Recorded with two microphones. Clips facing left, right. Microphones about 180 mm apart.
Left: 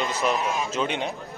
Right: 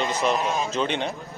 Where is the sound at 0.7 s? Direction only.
5° left (ahead or behind).